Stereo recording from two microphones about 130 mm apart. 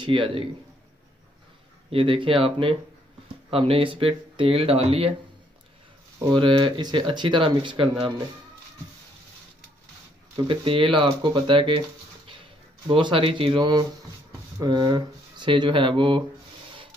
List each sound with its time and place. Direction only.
0.0 s speech: 40° right (ahead or behind)
1.9 s speech: 45° right (ahead or behind)
6.3 s speech: 40° right (ahead or behind)
10.3 s speech: 40° right (ahead or behind)
12.8 s speech: 40° right (ahead or behind)